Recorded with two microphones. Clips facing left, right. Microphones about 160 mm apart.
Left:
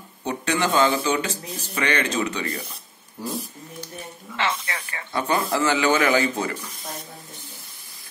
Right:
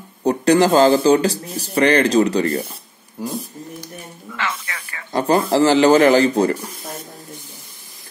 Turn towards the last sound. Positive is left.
turn(degrees=-35)  # may be behind; listen again after turning